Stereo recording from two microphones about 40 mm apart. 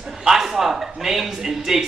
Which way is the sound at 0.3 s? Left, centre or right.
Centre.